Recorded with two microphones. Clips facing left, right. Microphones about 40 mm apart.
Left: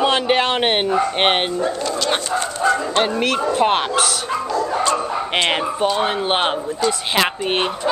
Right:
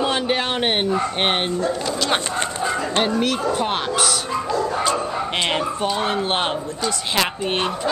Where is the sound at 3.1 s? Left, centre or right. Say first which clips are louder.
Left 3 dB; left.